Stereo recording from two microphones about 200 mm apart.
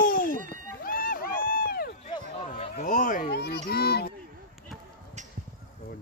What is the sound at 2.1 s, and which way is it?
Chatter, 30° left (ahead or behind).